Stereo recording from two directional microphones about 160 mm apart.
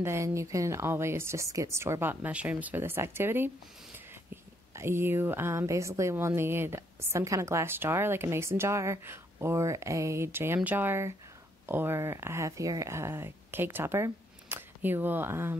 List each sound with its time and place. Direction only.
0.0 s a woman's voice: 15° right (ahead or behind)
4.7 s a woman's voice: 15° right (ahead or behind)